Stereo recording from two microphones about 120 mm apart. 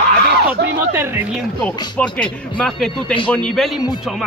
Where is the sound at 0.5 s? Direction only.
15° right (ahead or behind).